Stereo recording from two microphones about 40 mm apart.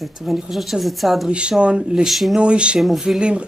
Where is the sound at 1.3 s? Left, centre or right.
Right.